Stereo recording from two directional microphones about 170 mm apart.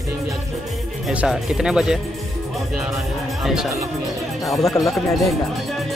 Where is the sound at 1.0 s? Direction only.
Centre (ahead or behind).